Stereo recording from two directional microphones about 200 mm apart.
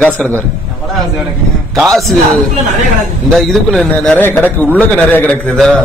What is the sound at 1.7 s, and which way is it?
Speech, centre (ahead or behind).